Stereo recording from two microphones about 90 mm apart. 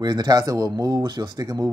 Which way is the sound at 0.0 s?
50° right (ahead or behind).